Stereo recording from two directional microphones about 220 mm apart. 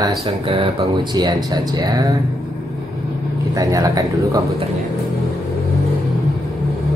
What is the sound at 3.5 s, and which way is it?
Speech, 15° right (ahead or behind).